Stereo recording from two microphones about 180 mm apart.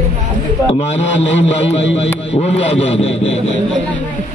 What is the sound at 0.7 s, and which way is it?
A man's voice, 35° left (ahead or behind).